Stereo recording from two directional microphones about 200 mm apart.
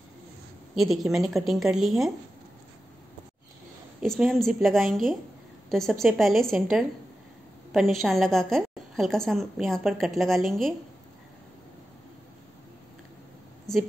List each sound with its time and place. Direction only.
0.7 s a woman's voice: centre (ahead or behind)
4.0 s a woman's voice: centre (ahead or behind)
13.7 s a woman's voice: centre (ahead or behind)